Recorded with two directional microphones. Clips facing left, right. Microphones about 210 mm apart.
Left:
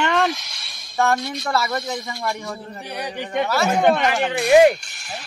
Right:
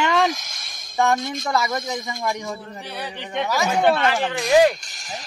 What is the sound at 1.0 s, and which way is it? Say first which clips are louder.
Speech: even; 20° right (ahead or behind).